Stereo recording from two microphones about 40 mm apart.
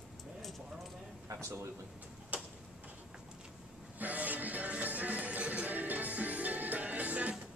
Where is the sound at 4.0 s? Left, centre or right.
Right.